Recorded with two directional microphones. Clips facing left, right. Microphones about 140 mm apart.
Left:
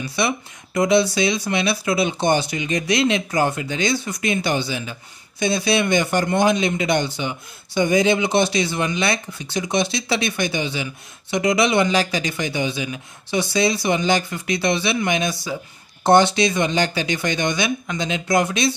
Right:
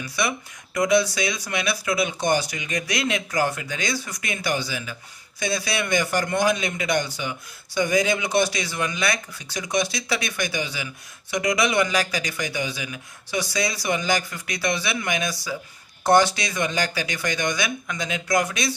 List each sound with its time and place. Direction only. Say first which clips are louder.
0.0 s a man's voice: left 4 dB; 25° left (ahead or behind)